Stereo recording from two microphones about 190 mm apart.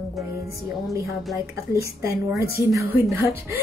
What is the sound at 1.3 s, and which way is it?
A woman's voice, 15° right (ahead or behind).